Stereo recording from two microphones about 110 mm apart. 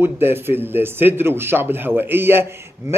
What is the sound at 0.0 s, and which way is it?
Speech, 20° right (ahead or behind).